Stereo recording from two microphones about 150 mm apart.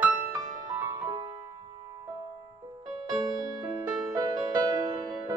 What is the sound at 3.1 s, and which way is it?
Music, 25° right (ahead or behind).